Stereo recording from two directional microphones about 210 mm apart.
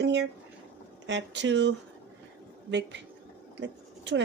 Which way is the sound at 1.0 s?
60° right (ahead or behind).